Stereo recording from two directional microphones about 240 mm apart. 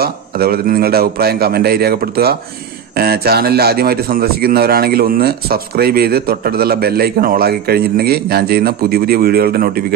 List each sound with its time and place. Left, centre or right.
0.0 s a man's voice: right